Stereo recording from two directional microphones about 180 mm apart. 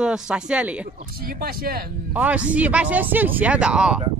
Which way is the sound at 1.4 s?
55° right (ahead or behind).